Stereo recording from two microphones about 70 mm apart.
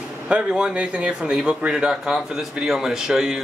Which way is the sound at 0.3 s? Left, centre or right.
Centre.